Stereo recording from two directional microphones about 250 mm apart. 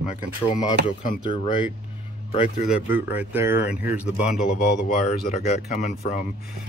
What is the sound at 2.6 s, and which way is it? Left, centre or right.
Speech, centre.